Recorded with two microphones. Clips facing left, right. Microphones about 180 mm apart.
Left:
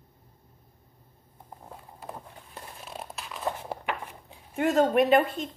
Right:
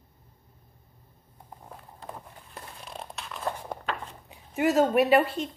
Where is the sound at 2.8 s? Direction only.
5° left (ahead or behind).